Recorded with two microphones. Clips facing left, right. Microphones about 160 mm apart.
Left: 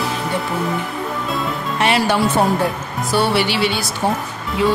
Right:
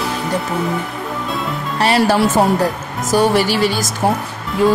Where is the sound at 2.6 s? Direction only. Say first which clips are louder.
Right 2 dB; 40° right (ahead or behind).